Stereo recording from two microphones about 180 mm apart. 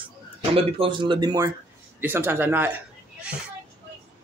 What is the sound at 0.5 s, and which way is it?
Speech, 30° right (ahead or behind).